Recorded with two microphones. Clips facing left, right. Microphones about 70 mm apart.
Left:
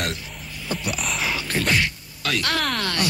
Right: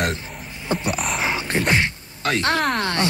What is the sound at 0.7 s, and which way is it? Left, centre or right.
Speech, right.